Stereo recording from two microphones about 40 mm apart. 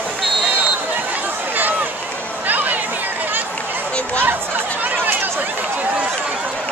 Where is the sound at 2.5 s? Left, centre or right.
Right.